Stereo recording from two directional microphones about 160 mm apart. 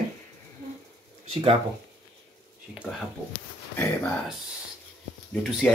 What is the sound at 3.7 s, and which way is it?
Speech, 10° left (ahead or behind).